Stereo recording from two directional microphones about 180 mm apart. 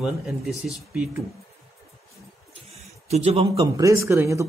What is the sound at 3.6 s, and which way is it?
Speech, 15° right (ahead or behind).